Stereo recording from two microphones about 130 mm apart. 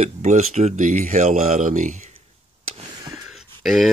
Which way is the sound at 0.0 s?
60° right (ahead or behind).